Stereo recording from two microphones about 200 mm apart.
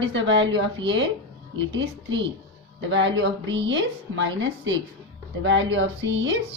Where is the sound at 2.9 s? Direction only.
65° right (ahead or behind).